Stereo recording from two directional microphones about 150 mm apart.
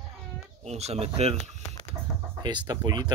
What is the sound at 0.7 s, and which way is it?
Speech, 45° right (ahead or behind).